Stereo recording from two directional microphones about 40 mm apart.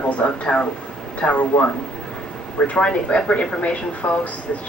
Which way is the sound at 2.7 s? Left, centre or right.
Left.